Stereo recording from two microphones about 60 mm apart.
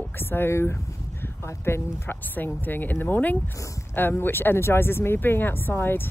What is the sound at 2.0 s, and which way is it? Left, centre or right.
Speech, left.